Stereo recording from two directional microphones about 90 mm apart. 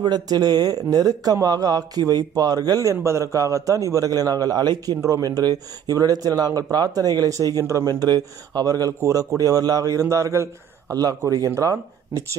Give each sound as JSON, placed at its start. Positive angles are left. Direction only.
{"t": 0.0, "sound": "speech", "side_deg": -50}
{"t": 5.0, "sound": "a man's voice", "side_deg": -40}